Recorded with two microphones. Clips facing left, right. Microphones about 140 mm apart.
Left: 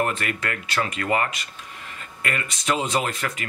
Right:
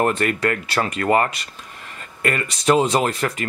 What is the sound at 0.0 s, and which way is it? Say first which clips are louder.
Speech: right 6 dB; 35° right (ahead or behind).